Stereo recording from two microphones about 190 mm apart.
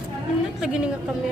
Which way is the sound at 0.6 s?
5° right (ahead or behind).